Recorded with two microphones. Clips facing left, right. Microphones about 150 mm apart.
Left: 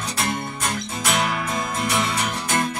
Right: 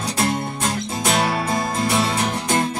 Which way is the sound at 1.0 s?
30° right (ahead or behind).